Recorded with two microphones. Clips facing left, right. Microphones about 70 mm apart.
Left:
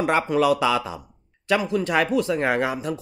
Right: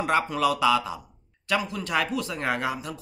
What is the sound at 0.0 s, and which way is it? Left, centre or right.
Speech, left.